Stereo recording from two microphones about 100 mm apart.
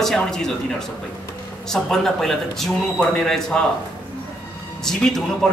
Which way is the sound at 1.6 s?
5° left (ahead or behind).